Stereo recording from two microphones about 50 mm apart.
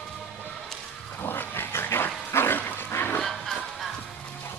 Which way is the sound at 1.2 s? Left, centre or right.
Left.